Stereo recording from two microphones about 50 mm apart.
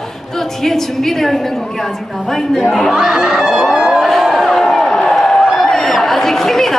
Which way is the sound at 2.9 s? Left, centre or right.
Centre.